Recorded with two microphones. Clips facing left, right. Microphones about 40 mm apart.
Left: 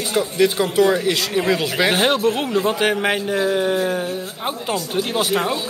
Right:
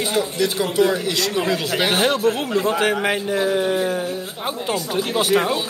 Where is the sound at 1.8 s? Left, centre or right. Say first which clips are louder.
Left 1 dB; left.